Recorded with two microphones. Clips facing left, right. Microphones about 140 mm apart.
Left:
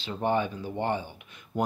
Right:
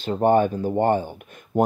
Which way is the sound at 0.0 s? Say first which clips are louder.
Right 9 dB; 50° right (ahead or behind).